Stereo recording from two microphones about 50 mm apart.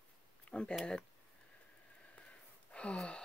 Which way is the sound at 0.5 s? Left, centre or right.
Centre.